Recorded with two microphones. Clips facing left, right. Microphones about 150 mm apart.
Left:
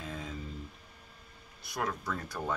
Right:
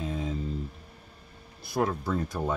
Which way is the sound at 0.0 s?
25° right (ahead or behind).